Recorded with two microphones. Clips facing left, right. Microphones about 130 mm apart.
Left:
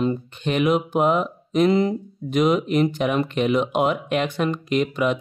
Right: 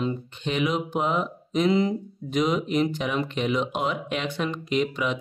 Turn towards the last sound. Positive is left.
turn(degrees=50)  # may be behind; listen again after turning